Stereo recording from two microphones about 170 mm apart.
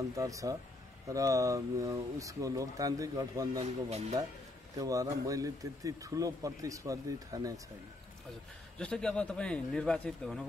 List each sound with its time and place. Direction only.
0.0 s speech: 20° right (ahead or behind)
4.7 s speech: 20° right (ahead or behind)
8.7 s speech: 5° left (ahead or behind)